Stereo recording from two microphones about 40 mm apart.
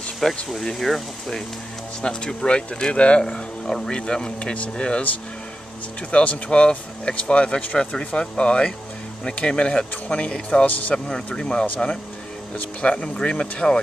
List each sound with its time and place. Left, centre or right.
0.2 s speech: centre
2.0 s speech: centre
6.1 s speech: left
10.7 s speech: left
11.3 s speech: left
12.8 s speech: left